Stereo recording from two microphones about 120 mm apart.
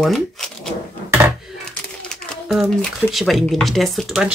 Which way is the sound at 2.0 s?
5° right (ahead or behind).